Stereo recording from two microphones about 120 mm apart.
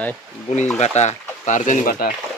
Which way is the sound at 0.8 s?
70° left (ahead or behind).